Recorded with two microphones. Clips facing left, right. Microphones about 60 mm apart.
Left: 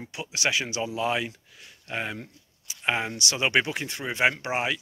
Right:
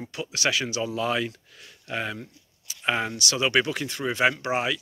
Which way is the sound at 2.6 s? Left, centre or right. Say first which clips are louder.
Right 1 dB; centre.